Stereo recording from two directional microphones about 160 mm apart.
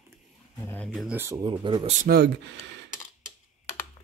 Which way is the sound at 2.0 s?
90° right.